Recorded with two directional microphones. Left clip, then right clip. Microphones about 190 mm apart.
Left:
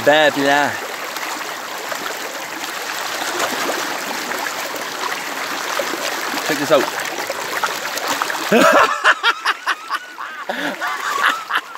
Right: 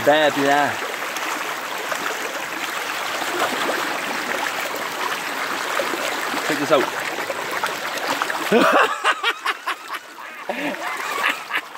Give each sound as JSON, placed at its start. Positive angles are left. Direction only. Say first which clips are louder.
{"t": 0.0, "sound": "speech", "louder": "left 3 dB", "side_deg": 40}
{"t": 6.4, "sound": "speech", "louder": "left 3 dB", "side_deg": 35}
{"t": 8.2, "sound": "splash", "louder": "left 4 dB", "side_deg": 30}